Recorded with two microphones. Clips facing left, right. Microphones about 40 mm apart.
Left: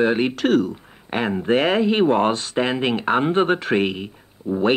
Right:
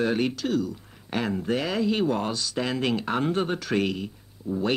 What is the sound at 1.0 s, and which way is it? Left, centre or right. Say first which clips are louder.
Speech: left 6 dB; left.